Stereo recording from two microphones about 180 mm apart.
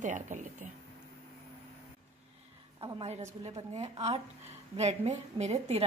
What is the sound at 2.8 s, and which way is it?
A woman's voice, 35° right (ahead or behind).